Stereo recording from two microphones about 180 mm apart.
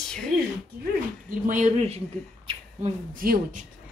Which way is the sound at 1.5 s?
45° right (ahead or behind).